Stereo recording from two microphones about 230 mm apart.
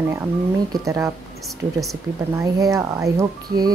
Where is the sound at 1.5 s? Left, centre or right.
Centre.